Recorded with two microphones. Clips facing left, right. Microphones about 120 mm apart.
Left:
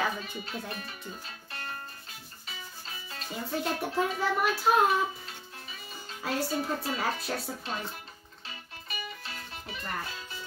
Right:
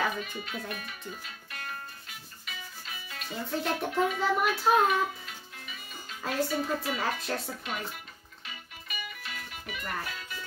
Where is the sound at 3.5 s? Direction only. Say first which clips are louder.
Even; 5° left (ahead or behind).